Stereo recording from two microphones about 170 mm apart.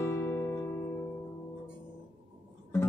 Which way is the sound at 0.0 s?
15° left (ahead or behind).